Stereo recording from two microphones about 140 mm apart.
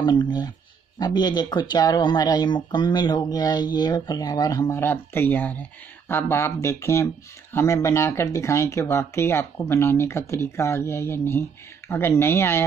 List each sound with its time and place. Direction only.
0.0 s speech: 30° left (ahead or behind)